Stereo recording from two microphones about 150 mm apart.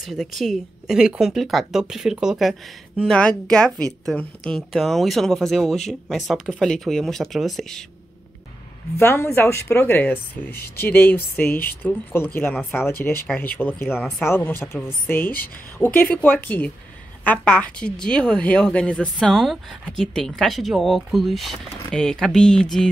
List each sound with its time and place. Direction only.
0.0 s a woman's voice: centre (ahead or behind)
8.9 s a woman's voice: 15° left (ahead or behind)